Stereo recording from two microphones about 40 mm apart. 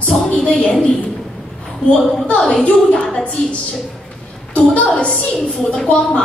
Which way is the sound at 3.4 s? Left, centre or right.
Left.